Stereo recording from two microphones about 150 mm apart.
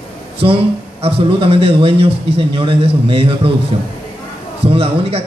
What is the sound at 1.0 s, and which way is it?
A man's voice, 40° right (ahead or behind).